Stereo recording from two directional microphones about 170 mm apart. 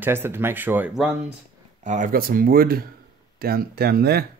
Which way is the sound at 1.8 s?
45° right (ahead or behind).